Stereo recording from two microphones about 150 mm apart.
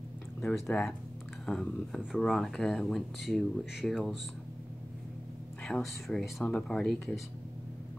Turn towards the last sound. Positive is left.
turn(degrees=0)  # may be behind; listen again after turning